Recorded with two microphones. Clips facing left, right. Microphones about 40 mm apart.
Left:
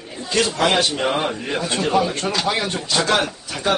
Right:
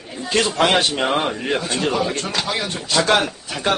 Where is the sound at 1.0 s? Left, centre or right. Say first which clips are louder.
Right 1 dB; centre.